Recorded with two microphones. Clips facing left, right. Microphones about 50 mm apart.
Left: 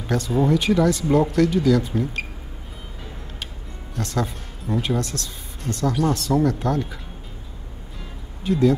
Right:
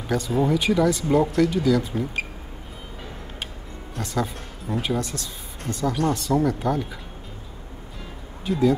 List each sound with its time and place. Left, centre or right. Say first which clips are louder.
0.0 s speech: left 1 dB; centre
4.0 s speech: left 1 dB; centre
8.0 s music: left 2 dB; centre